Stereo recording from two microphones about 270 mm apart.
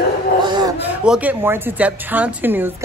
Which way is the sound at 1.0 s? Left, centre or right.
Centre.